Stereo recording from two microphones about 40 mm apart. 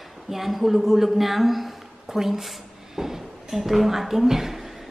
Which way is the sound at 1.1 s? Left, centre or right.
Centre.